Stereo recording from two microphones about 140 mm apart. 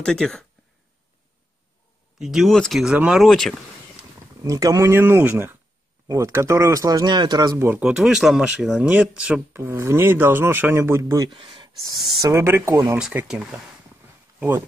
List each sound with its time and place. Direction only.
0.0 s speech: 5° left (ahead or behind)
2.1 s speech: centre (ahead or behind)
4.5 s speech: 25° right (ahead or behind)
7.8 s speech: 5° right (ahead or behind)
9.5 s speech: 15° right (ahead or behind)
11.3 s a sound: 35° right (ahead or behind)
11.8 s speech: 30° right (ahead or behind)
12.3 s speech: 20° right (ahead or behind)
13.3 s speech: 5° right (ahead or behind)